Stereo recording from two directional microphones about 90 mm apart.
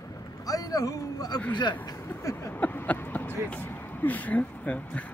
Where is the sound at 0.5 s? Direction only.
40° left (ahead or behind).